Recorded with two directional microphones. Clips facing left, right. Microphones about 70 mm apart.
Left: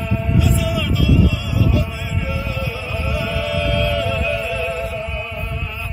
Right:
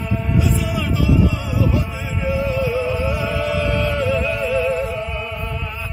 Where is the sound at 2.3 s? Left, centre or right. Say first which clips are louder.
Right 9 dB; right.